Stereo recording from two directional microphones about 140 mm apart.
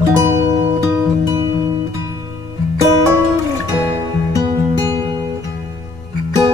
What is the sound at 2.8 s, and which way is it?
Music, 20° right (ahead or behind).